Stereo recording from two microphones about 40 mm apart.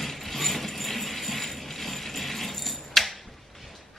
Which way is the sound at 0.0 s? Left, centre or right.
Centre.